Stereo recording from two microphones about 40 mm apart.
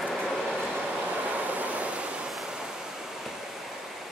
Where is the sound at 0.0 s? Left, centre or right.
Centre.